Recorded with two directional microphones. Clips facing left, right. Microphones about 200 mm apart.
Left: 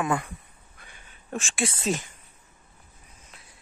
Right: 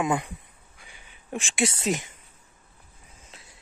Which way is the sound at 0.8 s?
10° right (ahead or behind).